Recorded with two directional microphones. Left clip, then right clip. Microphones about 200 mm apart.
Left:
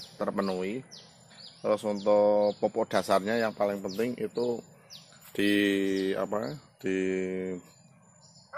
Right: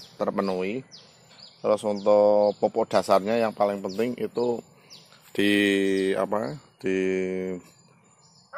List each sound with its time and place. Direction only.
0.2 s speech: 30° right (ahead or behind)